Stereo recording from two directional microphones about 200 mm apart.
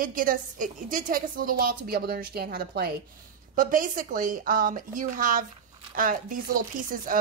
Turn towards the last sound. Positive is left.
turn(degrees=-45)  # may be behind; listen again after turning